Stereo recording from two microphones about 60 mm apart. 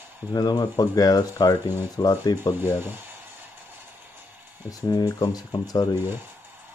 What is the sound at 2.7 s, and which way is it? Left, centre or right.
Speech, right.